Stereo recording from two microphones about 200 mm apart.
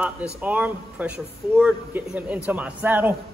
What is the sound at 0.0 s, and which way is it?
A man's voice, 5° right (ahead or behind).